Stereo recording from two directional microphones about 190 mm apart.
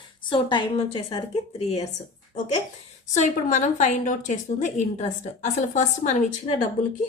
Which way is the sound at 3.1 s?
40° left (ahead or behind).